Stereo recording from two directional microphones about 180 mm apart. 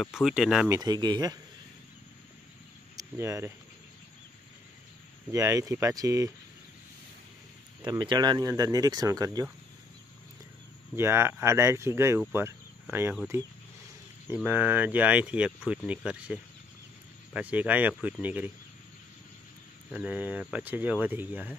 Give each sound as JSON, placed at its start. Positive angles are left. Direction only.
{"t": 0.0, "sound": "speech", "side_deg": -5}
{"t": 0.7, "sound": "speech", "side_deg": -20}
{"t": 3.0, "sound": "speech", "side_deg": -15}
{"t": 5.3, "sound": "speech", "side_deg": -15}
{"t": 7.8, "sound": "speech", "side_deg": -25}
{"t": 11.0, "sound": "speech", "side_deg": -15}
{"t": 19.9, "sound": "speech", "side_deg": -10}